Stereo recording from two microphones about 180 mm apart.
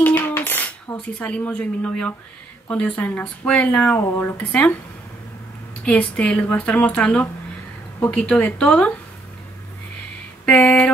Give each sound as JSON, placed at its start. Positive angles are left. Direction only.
{"t": 0.0, "sound": "cutlery", "side_deg": 10}
{"t": 1.2, "sound": "speech", "side_deg": 5}
{"t": 5.9, "sound": "speech", "side_deg": 5}
{"t": 10.4, "sound": "a sound", "side_deg": 5}